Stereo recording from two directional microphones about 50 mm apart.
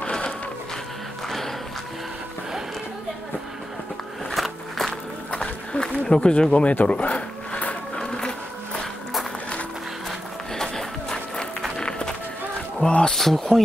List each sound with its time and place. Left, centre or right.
1.2 s music: centre
4.3 s a sound: centre
5.3 s a sound: centre
10.5 s music: centre
11.8 s run: centre
12.7 s speech: centre
13.2 s speech: centre